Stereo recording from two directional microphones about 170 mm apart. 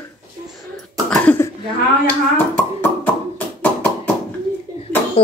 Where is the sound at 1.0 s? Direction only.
5° left (ahead or behind).